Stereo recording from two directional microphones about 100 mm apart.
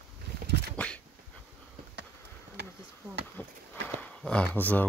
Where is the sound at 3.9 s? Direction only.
10° left (ahead or behind).